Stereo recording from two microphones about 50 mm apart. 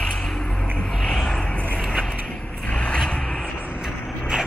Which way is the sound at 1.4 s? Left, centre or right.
Left.